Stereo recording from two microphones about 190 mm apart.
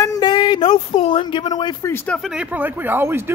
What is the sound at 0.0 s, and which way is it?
Speech, 20° left (ahead or behind).